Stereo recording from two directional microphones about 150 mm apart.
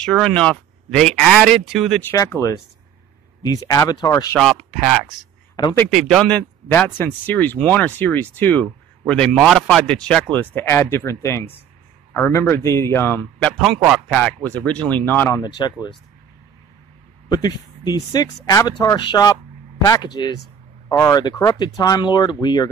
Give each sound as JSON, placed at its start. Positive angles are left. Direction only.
{"t": 0.0, "sound": "speech", "side_deg": 5}
{"t": 2.0, "sound": "speech", "side_deg": 15}
{"t": 4.6, "sound": "speech", "side_deg": -5}
{"t": 15.4, "sound": "speech", "side_deg": 30}
{"t": 17.3, "sound": "speech", "side_deg": 30}